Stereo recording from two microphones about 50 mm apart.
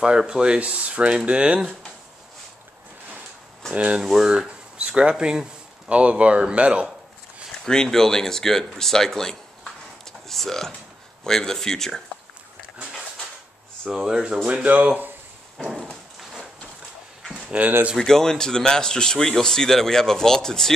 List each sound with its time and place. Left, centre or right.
0.0 s speech: centre
3.7 s speech: right
4.0 s speech: centre
7.6 s speech: centre
10.2 s a sound: centre
11.2 s speech: centre
14.0 s speech: centre
15.5 s a sound: centre
17.3 s a sound: centre
17.9 s speech: centre